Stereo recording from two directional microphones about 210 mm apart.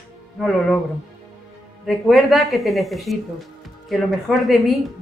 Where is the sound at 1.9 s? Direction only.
Centre (ahead or behind).